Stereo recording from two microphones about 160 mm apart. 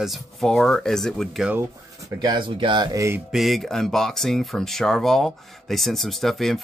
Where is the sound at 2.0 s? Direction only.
25° right (ahead or behind).